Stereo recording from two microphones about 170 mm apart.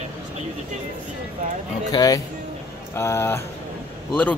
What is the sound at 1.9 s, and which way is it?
Speech, 20° left (ahead or behind).